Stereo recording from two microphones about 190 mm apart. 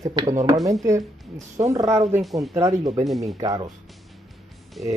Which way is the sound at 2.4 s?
15° right (ahead or behind).